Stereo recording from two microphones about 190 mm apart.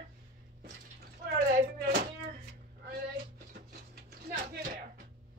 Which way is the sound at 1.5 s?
55° right (ahead or behind).